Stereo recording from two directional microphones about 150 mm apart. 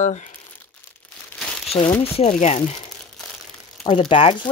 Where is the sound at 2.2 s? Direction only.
50° left (ahead or behind).